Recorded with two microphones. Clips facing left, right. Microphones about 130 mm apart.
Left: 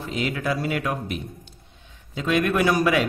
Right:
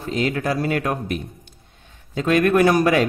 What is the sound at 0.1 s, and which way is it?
A man's voice, 45° right (ahead or behind).